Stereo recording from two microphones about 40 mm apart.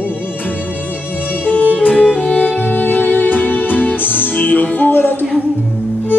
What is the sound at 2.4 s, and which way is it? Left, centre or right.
Music, left.